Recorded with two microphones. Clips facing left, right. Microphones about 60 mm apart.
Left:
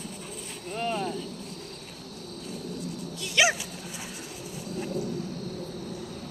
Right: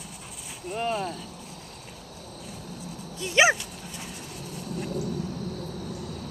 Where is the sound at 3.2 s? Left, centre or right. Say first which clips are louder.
Right 4 dB; right.